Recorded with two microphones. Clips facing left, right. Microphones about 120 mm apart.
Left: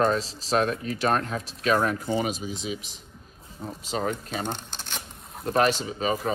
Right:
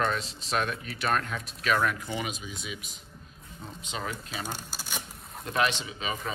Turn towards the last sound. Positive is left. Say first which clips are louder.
# left 8 dB
turn(degrees=40)  # may be behind; listen again after turning